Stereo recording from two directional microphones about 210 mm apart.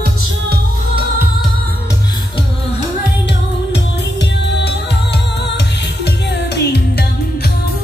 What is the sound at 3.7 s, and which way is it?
Music, 55° left (ahead or behind).